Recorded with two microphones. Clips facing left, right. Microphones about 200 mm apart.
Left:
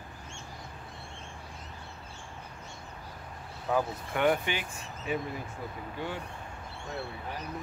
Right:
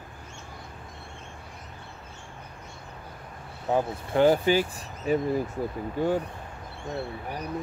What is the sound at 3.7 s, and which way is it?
Speech, 30° right (ahead or behind).